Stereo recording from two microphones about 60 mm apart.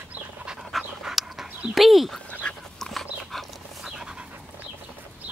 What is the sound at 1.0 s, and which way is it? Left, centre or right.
Dog, centre.